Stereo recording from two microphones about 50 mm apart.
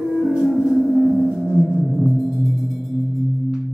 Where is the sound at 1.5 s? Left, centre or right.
Left.